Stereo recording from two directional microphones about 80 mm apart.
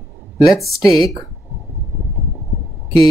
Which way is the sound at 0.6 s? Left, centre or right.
Centre.